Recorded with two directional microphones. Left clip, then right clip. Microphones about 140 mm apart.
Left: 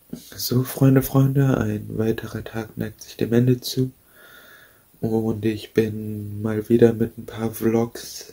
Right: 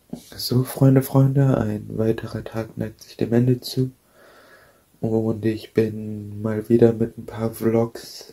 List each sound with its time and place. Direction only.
0.1 s speech: 15° left (ahead or behind)
5.0 s speech: 15° left (ahead or behind)